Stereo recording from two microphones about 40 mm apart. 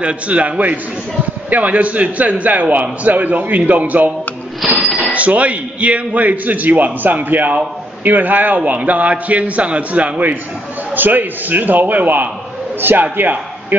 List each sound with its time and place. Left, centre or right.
0.0 s a man's voice: right
5.1 s a man's voice: right
11.0 s a man's voice: right